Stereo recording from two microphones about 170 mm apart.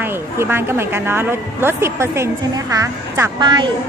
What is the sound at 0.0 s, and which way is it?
A woman's voice, 15° right (ahead or behind).